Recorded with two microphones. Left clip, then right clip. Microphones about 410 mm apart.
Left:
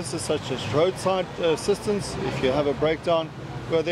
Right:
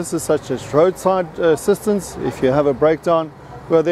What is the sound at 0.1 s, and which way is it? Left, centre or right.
Speech, right.